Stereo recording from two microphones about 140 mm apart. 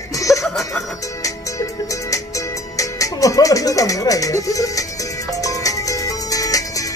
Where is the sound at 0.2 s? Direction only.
25° left (ahead or behind).